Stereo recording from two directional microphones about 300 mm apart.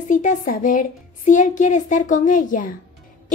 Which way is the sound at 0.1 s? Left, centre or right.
Left.